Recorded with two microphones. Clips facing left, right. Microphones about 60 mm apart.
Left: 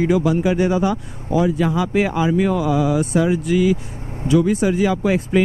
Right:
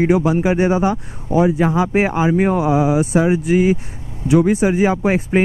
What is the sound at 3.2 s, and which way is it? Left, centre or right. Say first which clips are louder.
Speech: right 2 dB; right.